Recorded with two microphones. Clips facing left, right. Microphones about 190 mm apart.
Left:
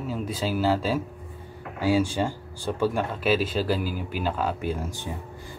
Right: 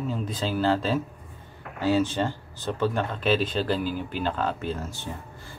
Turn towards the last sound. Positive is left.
turn(degrees=15)  # may be behind; listen again after turning